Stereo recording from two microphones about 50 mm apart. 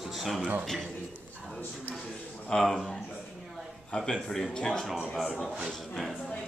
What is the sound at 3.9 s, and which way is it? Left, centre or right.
Speech, centre.